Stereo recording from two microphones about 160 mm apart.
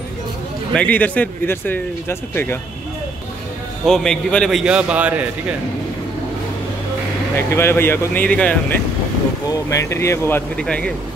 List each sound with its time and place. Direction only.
0.7 s speech: 10° left (ahead or behind)
3.8 s a man's voice: 5° left (ahead or behind)
7.5 s speech: 15° left (ahead or behind)
9.5 s speech: 20° left (ahead or behind)